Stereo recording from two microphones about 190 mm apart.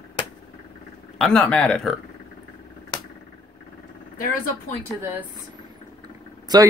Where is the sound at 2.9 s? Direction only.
25° left (ahead or behind).